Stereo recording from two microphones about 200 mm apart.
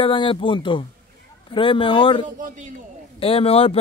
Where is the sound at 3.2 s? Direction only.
30° left (ahead or behind).